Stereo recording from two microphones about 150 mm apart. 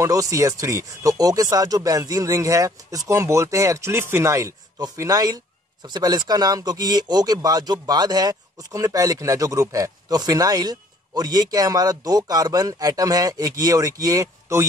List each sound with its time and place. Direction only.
0.0 s speech: 20° right (ahead or behind)